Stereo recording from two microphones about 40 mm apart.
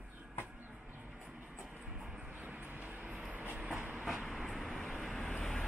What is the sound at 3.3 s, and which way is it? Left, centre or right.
Train, right.